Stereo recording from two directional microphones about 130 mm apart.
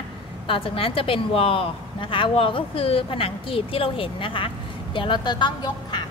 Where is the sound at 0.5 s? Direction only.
45° left (ahead or behind).